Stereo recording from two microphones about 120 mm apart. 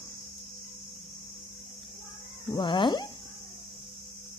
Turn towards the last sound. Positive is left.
turn(degrees=40)  # may be behind; listen again after turning